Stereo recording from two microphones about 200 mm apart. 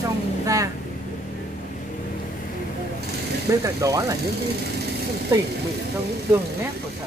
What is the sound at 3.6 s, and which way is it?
Speech, 15° right (ahead or behind).